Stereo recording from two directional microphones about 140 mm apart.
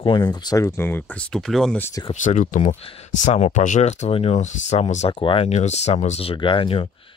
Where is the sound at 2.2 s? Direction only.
65° left (ahead or behind).